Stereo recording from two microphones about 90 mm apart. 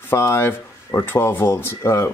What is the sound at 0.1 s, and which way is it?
Speech, 30° left (ahead or behind).